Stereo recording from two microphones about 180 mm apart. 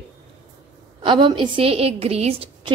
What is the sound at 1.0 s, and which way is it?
A woman's voice, 25° right (ahead or behind).